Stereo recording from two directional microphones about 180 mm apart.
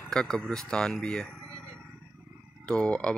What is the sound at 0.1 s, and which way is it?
Speech, 5° left (ahead or behind).